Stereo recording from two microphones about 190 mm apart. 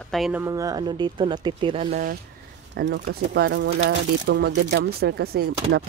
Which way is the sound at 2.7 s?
60° right (ahead or behind).